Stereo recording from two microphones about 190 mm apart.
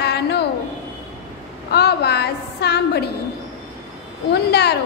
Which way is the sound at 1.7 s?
60° left (ahead or behind).